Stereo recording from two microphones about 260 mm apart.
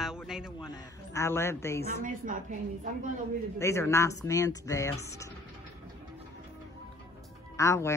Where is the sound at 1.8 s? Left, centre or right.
Right.